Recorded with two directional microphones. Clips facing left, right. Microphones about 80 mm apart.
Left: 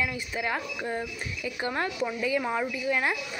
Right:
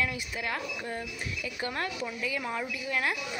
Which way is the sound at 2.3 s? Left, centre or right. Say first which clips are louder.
Left 6 dB; left.